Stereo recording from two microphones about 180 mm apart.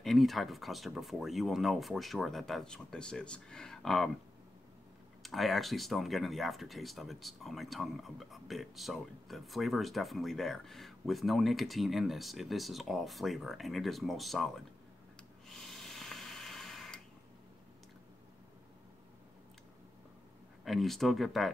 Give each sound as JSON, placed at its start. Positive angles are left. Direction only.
{"t": 0.0, "sound": "speech", "side_deg": 0}
{"t": 5.2, "sound": "speech", "side_deg": 0}
{"t": 15.4, "sound": "a sound", "side_deg": 0}
{"t": 20.6, "sound": "speech", "side_deg": 0}